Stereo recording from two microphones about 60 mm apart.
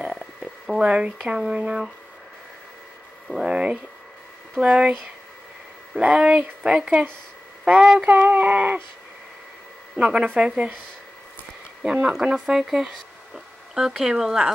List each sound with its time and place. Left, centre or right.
0.0 s a sound: centre
0.8 s speech: centre
3.4 s speech: centre
5.9 s speech: centre
8.0 s speech: right
9.9 s speech: centre
11.8 s speech: centre